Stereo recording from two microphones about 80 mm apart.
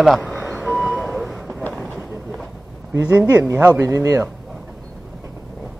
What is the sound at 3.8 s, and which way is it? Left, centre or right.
Speech, right.